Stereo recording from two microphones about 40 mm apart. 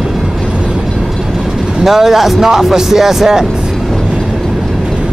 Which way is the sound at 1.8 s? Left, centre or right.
Centre.